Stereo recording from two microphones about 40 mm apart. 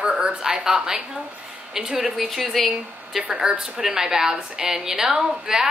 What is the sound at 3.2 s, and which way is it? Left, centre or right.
Speech, right.